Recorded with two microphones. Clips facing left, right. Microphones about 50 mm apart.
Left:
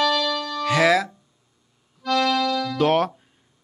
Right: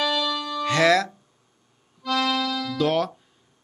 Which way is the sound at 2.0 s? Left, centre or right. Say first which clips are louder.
Left 3 dB; centre.